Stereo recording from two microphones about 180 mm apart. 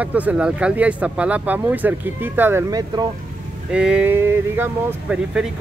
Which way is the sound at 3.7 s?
5° right (ahead or behind).